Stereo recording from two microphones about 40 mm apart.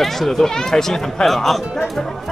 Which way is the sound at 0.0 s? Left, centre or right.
Centre.